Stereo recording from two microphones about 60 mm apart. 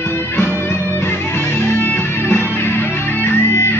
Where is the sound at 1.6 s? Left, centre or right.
Left.